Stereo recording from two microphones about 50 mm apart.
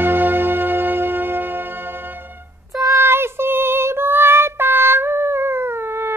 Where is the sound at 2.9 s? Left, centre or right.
Right.